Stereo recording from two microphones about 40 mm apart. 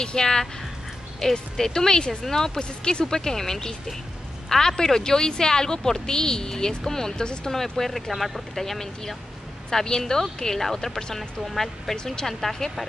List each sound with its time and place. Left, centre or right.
0.0 s a woman's voice: centre